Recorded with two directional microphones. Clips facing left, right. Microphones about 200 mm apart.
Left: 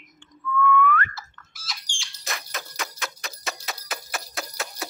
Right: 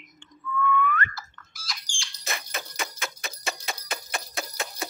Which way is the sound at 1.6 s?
Centre (ahead or behind).